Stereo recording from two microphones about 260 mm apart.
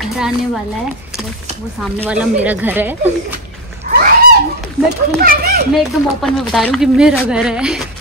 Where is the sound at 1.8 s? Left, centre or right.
Centre.